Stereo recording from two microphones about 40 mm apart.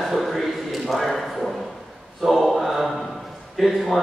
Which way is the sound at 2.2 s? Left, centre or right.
Centre.